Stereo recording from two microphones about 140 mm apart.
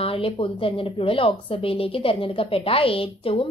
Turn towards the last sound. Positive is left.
turn(degrees=40)  # may be behind; listen again after turning